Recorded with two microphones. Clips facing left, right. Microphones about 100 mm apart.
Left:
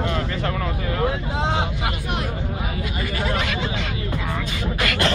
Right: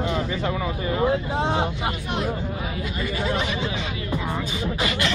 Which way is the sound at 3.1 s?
75° left (ahead or behind).